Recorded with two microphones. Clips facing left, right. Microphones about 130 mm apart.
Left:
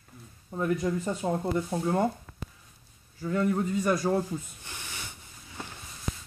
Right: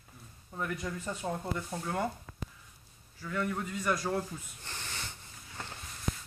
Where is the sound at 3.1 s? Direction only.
25° left (ahead or behind).